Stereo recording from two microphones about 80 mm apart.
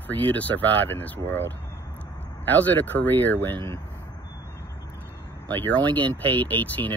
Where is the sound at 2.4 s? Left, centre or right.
Left.